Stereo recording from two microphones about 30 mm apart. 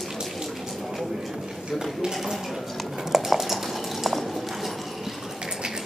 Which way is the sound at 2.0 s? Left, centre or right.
Right.